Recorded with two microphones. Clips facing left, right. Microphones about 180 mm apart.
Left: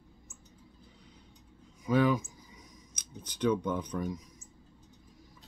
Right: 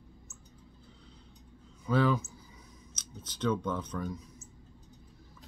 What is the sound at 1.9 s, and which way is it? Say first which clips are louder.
Speech: left 1 dB; 10° left (ahead or behind).